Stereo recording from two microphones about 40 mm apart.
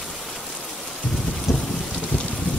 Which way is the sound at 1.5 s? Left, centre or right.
Centre.